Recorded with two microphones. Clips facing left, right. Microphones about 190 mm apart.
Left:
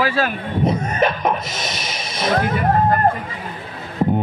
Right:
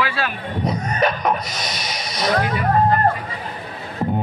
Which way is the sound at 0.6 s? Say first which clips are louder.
Left 2 dB; 25° left (ahead or behind).